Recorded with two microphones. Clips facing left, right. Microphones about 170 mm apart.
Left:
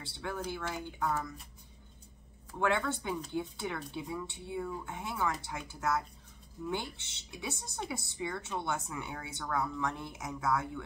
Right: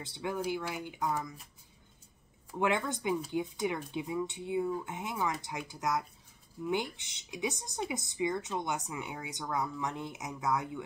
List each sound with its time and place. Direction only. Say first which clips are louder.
0.0 s speech: right 4 dB; 15° right (ahead or behind)
2.6 s speech: right 1 dB; 15° right (ahead or behind)